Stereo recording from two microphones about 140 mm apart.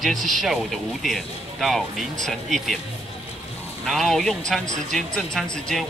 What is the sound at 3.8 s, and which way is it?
Speech, centre (ahead or behind).